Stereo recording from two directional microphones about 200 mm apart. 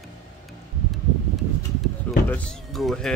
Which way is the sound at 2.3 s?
5° left (ahead or behind).